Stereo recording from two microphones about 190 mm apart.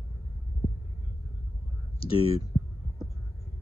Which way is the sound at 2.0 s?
30° left (ahead or behind).